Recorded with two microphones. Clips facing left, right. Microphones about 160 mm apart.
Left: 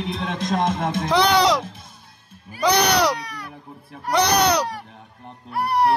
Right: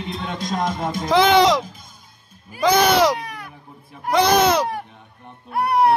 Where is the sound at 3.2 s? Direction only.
50° right (ahead or behind).